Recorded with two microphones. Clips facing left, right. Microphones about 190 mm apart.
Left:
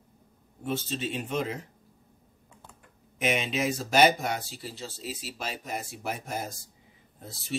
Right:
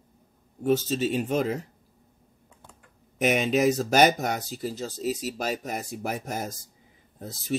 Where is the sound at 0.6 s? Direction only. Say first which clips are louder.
Right 8 dB; 45° right (ahead or behind).